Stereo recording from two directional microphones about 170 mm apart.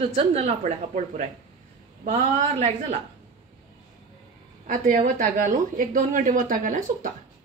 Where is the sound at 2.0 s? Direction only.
40° right (ahead or behind).